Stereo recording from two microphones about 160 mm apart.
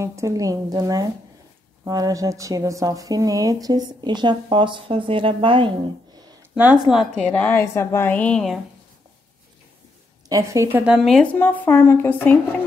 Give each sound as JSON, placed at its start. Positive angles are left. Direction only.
{"t": 0.0, "sound": "a woman's voice", "side_deg": -20}
{"t": 6.5, "sound": "a woman's voice", "side_deg": -5}
{"t": 10.2, "sound": "a woman's voice", "side_deg": -20}
{"t": 10.8, "sound": "a woman's voice", "side_deg": 0}